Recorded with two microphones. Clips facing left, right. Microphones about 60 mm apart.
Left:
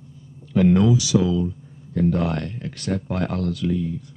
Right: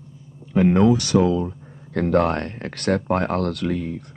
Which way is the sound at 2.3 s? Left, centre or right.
Right.